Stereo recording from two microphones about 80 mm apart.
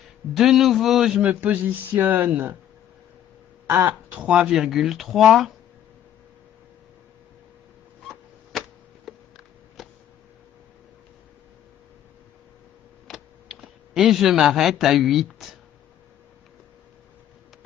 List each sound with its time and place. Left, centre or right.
0.3 s speech: centre
1.2 s speech: centre
3.6 s speech: right
4.2 s speech: centre
8.5 s a sound: centre
13.1 s computer keyboard: centre